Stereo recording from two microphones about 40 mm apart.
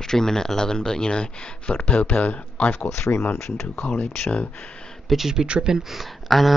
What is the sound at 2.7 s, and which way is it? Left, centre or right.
Speech, left.